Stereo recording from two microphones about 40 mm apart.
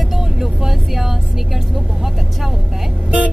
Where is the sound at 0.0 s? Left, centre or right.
Centre.